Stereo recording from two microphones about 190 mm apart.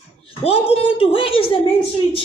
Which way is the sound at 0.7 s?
30° left (ahead or behind).